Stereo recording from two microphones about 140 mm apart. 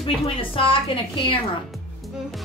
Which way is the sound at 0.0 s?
40° left (ahead or behind).